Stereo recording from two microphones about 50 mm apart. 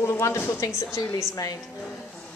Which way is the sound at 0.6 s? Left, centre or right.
Left.